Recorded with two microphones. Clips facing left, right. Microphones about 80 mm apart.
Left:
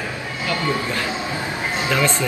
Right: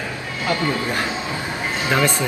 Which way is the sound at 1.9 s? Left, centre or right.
Right.